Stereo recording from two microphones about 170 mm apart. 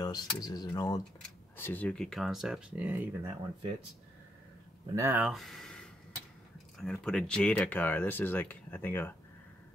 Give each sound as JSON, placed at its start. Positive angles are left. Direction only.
{"t": 0.0, "sound": "a sound", "side_deg": 25}
{"t": 0.4, "sound": "speech", "side_deg": 20}
{"t": 1.6, "sound": "speech", "side_deg": 10}
{"t": 4.9, "sound": "speech", "side_deg": -10}
{"t": 5.3, "sound": "speech", "side_deg": 0}